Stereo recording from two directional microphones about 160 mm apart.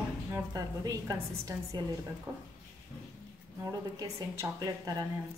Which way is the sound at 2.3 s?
15° right (ahead or behind).